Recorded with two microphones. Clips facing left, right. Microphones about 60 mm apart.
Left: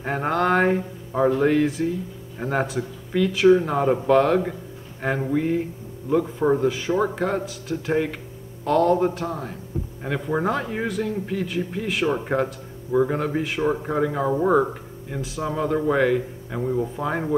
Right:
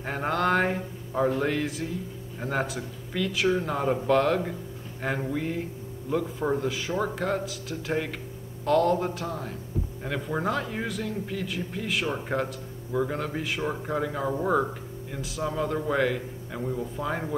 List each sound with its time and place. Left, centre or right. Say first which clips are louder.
0.0 s a man's voice: left 4 dB; centre